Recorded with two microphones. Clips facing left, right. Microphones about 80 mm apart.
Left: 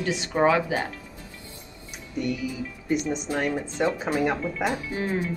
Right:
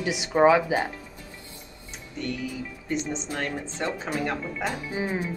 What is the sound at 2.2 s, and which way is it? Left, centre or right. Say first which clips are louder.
Speech: left 3 dB; centre.